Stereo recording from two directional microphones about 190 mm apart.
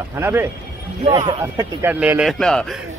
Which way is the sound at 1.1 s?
25° right (ahead or behind).